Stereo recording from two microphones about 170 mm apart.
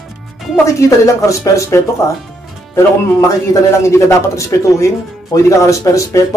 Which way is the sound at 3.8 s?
15° left (ahead or behind).